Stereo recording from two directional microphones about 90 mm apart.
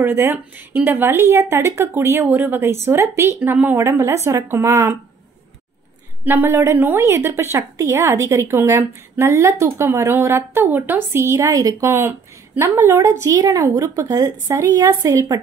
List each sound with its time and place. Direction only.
0.0 s speech: 30° right (ahead or behind)
6.2 s speech: 25° right (ahead or behind)
11.9 s speech: 25° right (ahead or behind)
13.0 s speech: 35° right (ahead or behind)